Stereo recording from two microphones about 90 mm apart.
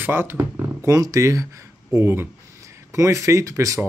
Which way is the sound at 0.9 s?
40° right (ahead or behind).